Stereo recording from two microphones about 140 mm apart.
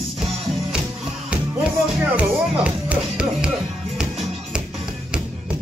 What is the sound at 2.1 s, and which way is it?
Speech, 10° right (ahead or behind).